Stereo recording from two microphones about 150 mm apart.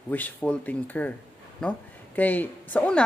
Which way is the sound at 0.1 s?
10° left (ahead or behind).